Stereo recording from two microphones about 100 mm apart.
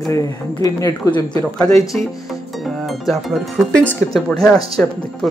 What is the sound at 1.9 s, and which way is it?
Speech, 10° left (ahead or behind).